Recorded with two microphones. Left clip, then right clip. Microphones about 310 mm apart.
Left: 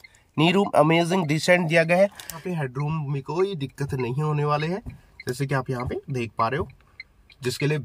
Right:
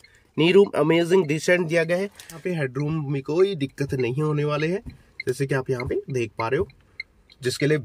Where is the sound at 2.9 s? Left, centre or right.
Centre.